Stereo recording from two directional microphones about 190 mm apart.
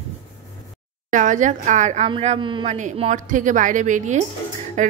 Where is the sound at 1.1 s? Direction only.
40° right (ahead or behind).